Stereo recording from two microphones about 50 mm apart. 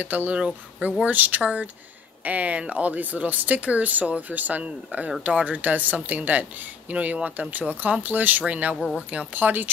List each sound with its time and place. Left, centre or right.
0.0 s speech: right
0.4 s speech: right
1.0 s speech: right